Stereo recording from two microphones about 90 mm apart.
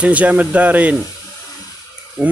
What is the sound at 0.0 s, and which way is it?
Speech, 15° right (ahead or behind).